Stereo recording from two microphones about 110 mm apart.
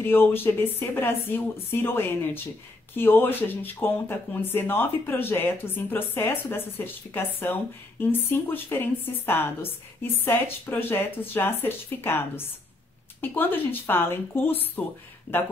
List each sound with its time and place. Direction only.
0.0 s speech: 20° left (ahead or behind)